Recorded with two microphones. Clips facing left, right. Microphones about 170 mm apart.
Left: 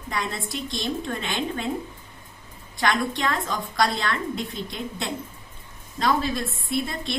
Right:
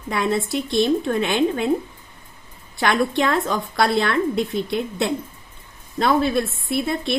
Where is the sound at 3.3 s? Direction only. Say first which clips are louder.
Right 6 dB; 60° right (ahead or behind).